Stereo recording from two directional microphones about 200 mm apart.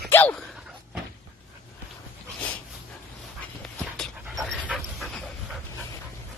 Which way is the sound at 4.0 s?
Centre (ahead or behind).